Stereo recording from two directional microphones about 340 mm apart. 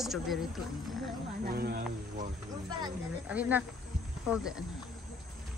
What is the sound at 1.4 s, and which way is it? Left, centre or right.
Speech, right.